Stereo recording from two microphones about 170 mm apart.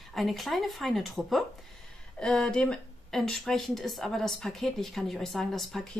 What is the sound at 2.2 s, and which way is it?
Speech, 5° left (ahead or behind).